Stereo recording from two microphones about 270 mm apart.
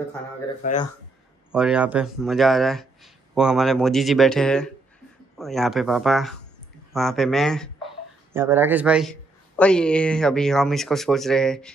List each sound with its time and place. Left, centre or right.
0.6 s speech: left
1.5 s a man's voice: centre
8.3 s a man's voice: centre